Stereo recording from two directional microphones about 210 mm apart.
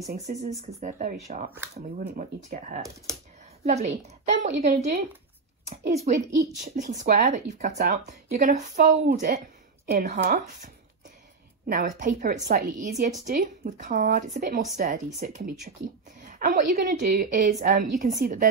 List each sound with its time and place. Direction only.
0.0 s a woman's voice: 30° right (ahead or behind); by 12.8 s 50° right (ahead or behind)
12.9 s a woman's voice: 35° right (ahead or behind)